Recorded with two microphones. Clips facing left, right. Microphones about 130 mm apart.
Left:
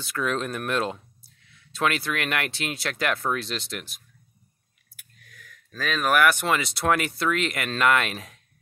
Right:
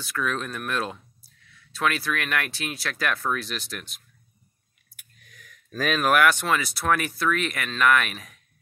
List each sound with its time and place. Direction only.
0.0 s speech: 25° left (ahead or behind)
4.9 s vehicle: 20° right (ahead or behind)
6.0 s speech: 5° left (ahead or behind)
6.3 s speech: 15° left (ahead or behind)